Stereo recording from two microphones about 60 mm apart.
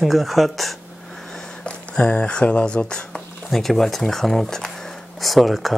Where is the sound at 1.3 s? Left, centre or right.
Centre.